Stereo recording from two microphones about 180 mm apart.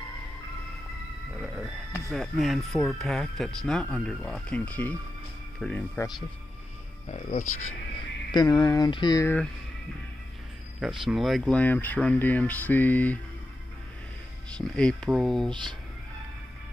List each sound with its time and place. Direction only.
2.0 s speech: centre (ahead or behind)
7.1 s speech: 40° left (ahead or behind)
8.3 s speech: 20° left (ahead or behind)
10.8 s speech: centre (ahead or behind)
14.6 s speech: 5° left (ahead or behind)